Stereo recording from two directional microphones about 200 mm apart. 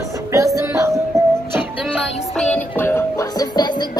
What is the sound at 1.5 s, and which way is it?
Music, 5° right (ahead or behind).